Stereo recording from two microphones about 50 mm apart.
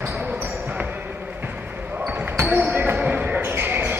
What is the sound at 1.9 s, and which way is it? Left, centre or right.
Basketball bounce, right.